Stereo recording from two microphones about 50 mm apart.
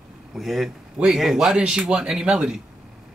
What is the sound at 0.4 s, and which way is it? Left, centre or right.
Speech, centre.